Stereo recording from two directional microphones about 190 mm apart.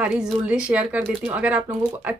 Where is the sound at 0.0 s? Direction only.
5° right (ahead or behind).